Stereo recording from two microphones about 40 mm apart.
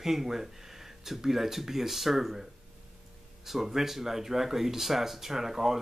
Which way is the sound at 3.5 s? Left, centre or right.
Centre.